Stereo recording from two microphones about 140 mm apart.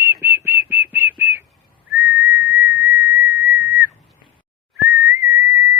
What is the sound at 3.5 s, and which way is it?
Whistle, 90° left.